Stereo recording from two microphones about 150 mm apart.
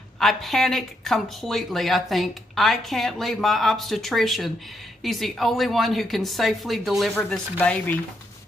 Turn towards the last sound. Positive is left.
turn(degrees=10)  # may be behind; listen again after turning